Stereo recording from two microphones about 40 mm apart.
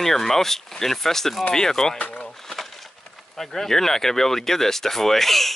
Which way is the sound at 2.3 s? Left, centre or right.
Centre.